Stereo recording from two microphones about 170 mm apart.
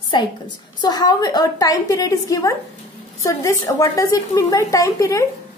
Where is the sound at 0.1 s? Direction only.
25° left (ahead or behind).